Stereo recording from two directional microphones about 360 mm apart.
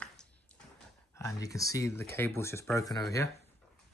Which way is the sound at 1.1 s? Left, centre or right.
Centre.